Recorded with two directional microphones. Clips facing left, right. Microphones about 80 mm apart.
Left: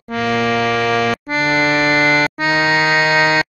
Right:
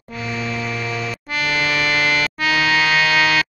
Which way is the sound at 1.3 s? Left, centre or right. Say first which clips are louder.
Left 3 dB; left.